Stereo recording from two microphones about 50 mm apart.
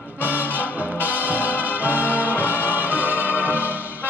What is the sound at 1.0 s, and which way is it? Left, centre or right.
Music, right.